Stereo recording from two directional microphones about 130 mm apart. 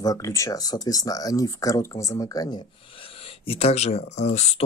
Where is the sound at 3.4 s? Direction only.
50° left (ahead or behind).